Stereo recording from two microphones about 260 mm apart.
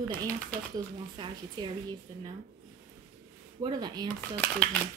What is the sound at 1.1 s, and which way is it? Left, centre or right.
Speech, centre.